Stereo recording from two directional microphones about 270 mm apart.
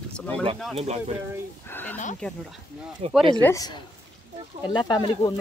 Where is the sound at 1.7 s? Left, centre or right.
Centre.